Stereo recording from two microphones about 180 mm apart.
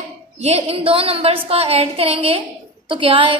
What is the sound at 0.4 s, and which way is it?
A woman's voice, 35° right (ahead or behind).